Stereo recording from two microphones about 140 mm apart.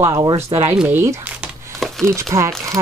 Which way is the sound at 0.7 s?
15° right (ahead or behind).